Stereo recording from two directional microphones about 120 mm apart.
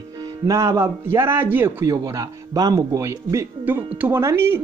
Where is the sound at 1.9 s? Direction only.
30° right (ahead or behind).